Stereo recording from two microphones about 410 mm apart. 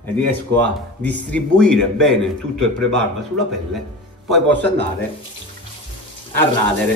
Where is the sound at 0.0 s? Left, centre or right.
Centre.